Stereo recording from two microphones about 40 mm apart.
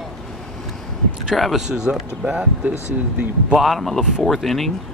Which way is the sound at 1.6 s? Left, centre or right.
Centre.